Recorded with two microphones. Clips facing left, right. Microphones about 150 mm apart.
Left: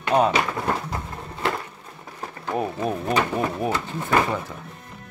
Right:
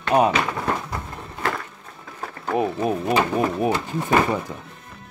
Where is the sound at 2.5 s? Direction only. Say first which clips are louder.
Right 3 dB; 10° right (ahead or behind).